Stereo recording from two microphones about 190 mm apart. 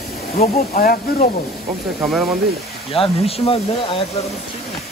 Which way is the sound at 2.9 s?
30° left (ahead or behind).